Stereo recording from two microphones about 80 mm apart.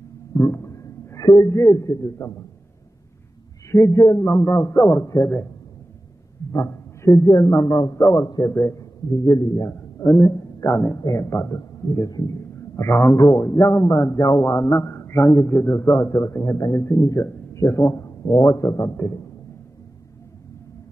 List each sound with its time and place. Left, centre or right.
0.3 s a sound: left
2.1 s a man's voice: left
3.7 s a man's voice: left
6.5 s a man's voice: left
8.7 s a man's voice: left
12.4 s a man's voice: left
16.7 s a man's voice: left
17.2 s a man's voice: left